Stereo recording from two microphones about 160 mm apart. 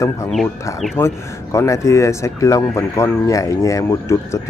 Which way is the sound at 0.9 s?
15° left (ahead or behind).